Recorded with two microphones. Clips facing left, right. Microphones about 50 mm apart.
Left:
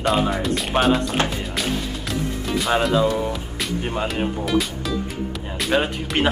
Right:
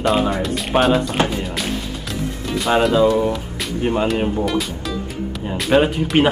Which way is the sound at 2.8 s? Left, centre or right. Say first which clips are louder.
Right 5 dB; centre.